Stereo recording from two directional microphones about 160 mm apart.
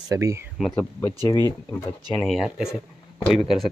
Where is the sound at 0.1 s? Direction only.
20° right (ahead or behind).